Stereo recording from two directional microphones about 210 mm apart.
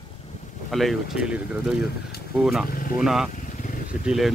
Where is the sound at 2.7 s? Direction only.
40° left (ahead or behind).